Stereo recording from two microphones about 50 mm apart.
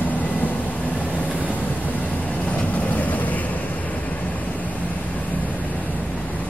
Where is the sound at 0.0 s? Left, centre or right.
Left.